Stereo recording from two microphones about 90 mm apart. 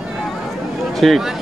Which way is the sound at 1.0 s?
Centre (ahead or behind).